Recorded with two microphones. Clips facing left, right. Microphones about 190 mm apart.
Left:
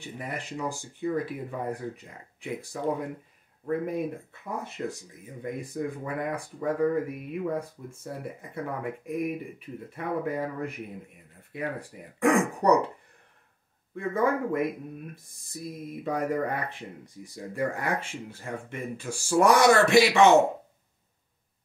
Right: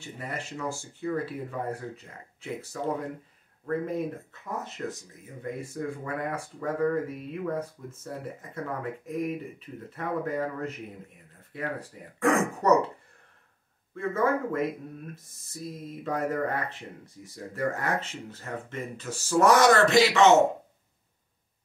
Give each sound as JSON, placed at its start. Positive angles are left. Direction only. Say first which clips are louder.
{"t": 0.0, "sound": "speech", "louder": "left 1 dB", "side_deg": 15}
{"t": 13.9, "sound": "speech", "louder": "even", "side_deg": 15}